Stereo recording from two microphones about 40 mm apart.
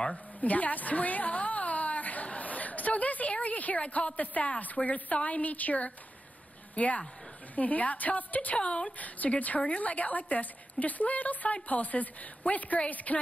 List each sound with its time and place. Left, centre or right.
0.4 s a woman's voice: left
8.5 s speech: left
8.9 s a woman's voice: left